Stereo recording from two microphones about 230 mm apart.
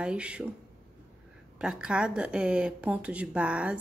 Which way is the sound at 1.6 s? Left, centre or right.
Centre.